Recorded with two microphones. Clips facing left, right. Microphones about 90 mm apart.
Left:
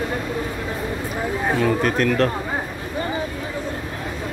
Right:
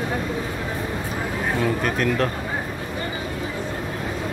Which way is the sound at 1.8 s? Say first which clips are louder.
Left 3 dB; 5° right (ahead or behind).